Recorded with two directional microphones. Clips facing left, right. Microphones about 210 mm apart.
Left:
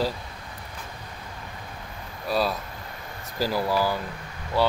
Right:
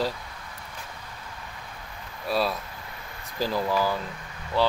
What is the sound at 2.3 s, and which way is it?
Speech, centre (ahead or behind).